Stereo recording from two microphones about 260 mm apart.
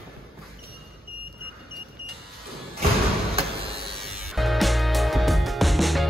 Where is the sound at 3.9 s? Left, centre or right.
Centre.